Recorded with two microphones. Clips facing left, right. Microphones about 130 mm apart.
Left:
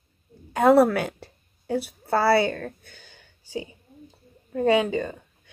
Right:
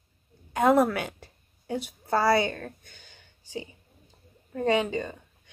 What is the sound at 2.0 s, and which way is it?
Speech, 5° left (ahead or behind).